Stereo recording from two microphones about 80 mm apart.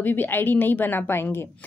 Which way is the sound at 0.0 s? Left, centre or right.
Left.